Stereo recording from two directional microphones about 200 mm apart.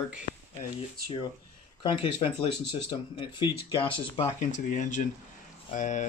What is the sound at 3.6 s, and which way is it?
Speech, 25° left (ahead or behind).